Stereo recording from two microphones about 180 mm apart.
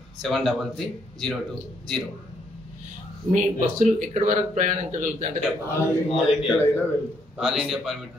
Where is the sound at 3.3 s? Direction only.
40° right (ahead or behind).